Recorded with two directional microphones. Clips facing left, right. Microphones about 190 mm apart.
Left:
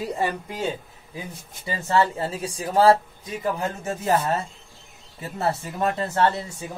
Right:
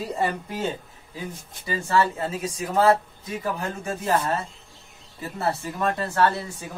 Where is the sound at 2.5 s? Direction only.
30° left (ahead or behind).